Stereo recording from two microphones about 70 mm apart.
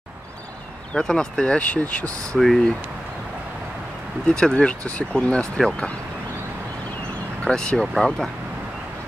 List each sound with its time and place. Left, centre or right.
0.9 s speech: centre
2.3 s speech: centre
4.3 s speech: centre
7.4 s speech: centre